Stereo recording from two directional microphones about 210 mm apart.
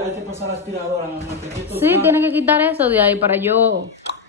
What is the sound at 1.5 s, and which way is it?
A woman's voice, 10° right (ahead or behind).